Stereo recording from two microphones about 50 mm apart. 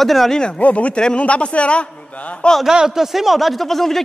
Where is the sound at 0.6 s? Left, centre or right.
Left.